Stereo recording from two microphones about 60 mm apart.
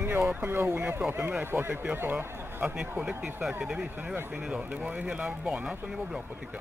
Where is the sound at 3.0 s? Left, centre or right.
Centre.